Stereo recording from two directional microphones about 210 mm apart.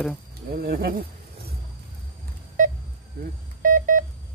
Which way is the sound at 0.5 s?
45° right (ahead or behind).